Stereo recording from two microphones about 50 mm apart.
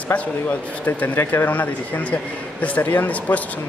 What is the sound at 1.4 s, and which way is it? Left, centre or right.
A man's voice, left.